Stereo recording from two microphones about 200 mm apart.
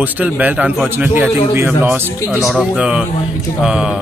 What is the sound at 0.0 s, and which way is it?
A man's voice, 10° right (ahead or behind).